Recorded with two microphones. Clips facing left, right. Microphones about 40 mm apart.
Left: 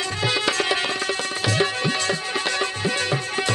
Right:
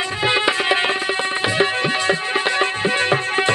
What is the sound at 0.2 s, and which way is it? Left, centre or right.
Music, right.